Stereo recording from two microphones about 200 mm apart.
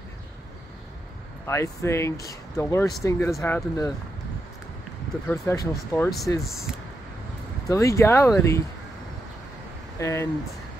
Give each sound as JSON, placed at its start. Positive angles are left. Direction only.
{"t": 1.4, "sound": "speech", "side_deg": 15}
{"t": 5.3, "sound": "speech", "side_deg": 15}
{"t": 7.6, "sound": "speech", "side_deg": 15}
{"t": 9.9, "sound": "speech", "side_deg": 15}